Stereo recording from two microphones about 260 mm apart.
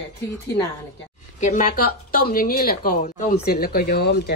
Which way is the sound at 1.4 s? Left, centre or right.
Left.